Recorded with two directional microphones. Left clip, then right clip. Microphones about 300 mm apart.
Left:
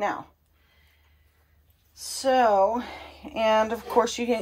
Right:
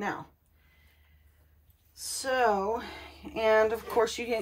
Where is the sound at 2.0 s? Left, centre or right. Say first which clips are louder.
Left 6 dB; centre.